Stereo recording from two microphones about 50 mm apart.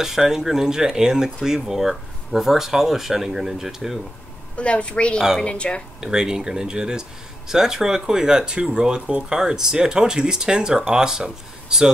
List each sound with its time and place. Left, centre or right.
0.0 s speech: centre
4.6 s a woman's voice: left
5.9 s speech: centre